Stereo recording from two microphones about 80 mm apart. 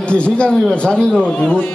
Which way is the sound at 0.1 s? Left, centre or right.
Centre.